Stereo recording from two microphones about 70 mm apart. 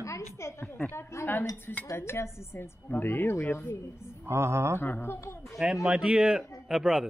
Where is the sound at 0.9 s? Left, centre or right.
Left.